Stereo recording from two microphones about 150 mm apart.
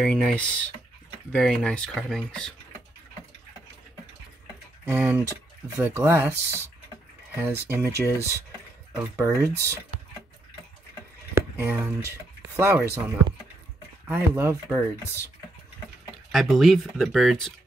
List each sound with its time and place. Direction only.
0.0 s speech: 5° left (ahead or behind)
4.8 s speech: 15° right (ahead or behind)
11.3 s a sound: 15° right (ahead or behind)
12.5 s speech: 15° right (ahead or behind)
16.3 s speech: centre (ahead or behind)